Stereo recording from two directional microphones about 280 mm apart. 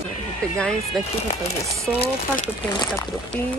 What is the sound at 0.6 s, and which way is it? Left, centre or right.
Speech, centre.